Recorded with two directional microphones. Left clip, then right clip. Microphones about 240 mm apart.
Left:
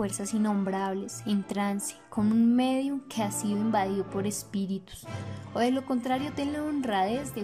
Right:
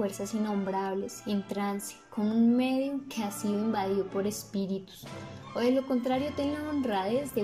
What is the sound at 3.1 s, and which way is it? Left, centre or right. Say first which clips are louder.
Speech: left 3 dB; left.